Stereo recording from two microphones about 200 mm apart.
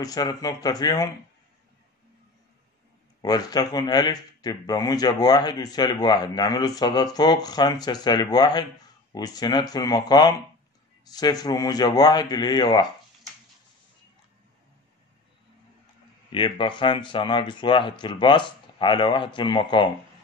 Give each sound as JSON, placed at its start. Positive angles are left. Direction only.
{"t": 0.0, "sound": "a man's voice", "side_deg": 20}
{"t": 3.2, "sound": "a man's voice", "side_deg": 20}
{"t": 16.3, "sound": "a man's voice", "side_deg": 25}